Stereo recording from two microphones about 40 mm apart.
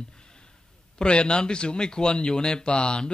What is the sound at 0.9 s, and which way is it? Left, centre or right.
Speech, left.